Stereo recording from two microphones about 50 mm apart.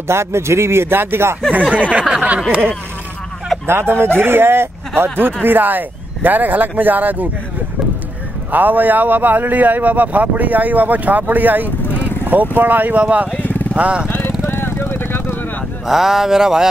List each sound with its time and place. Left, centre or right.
0.1 s speech: right
1.5 s speech: right
3.6 s speech: right
8.5 s speech: right
13.0 s speech: right
14.0 s vehicle: left
15.9 s speech: centre